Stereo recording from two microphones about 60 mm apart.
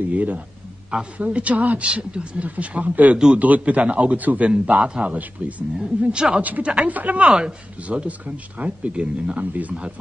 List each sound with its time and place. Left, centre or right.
0.1 s speech: right
5.4 s speech: right
5.8 s speech: centre